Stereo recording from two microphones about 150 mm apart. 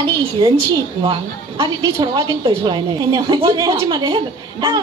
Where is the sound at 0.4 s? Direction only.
30° right (ahead or behind).